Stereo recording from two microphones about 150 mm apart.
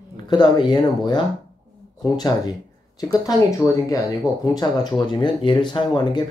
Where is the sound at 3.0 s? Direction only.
25° left (ahead or behind).